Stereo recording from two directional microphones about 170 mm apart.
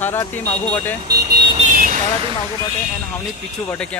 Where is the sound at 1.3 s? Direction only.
25° right (ahead or behind).